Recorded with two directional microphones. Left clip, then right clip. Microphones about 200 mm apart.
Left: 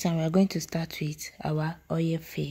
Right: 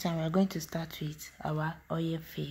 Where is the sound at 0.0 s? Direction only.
30° left (ahead or behind).